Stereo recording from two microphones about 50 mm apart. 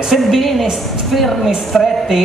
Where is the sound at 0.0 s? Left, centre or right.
Centre.